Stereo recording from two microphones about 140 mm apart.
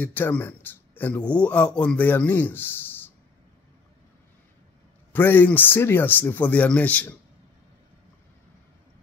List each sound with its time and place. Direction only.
0.0 s a man's voice: 15° left (ahead or behind)
5.1 s a man's voice: 15° left (ahead or behind)